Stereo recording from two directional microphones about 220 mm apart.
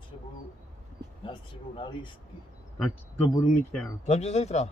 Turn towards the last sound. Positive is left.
turn(degrees=30)  # may be behind; listen again after turning